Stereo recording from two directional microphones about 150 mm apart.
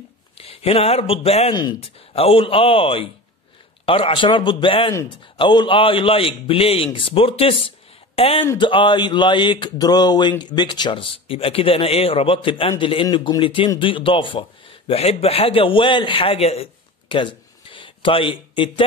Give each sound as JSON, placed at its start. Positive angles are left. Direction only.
{"t": 0.4, "sound": "speech", "side_deg": 40}
{"t": 1.5, "sound": "a man's voice", "side_deg": 30}
{"t": 17.1, "sound": "a sound", "side_deg": 35}